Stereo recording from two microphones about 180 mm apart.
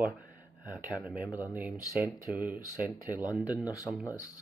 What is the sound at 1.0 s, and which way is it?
Speech, 10° right (ahead or behind).